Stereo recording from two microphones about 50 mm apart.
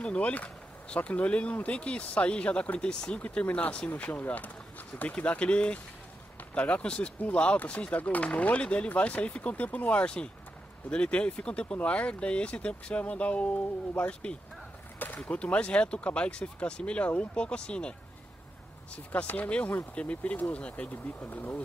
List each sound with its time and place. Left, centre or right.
0.0 s speech: left
2.8 s speech: centre
19.2 s speech: left
21.2 s speech: left